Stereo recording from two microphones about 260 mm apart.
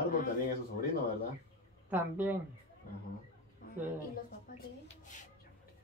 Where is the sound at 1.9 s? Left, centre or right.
Centre.